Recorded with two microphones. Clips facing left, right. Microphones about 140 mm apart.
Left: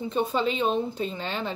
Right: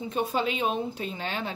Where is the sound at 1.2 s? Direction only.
50° right (ahead or behind).